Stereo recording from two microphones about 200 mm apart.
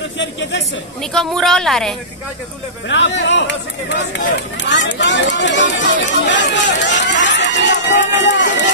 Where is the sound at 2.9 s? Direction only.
65° left (ahead or behind).